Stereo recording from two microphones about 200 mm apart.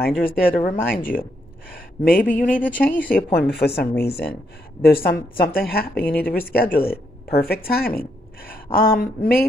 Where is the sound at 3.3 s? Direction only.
55° left (ahead or behind).